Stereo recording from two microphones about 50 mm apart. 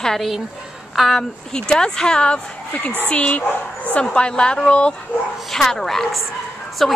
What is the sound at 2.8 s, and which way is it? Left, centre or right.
Speech, left.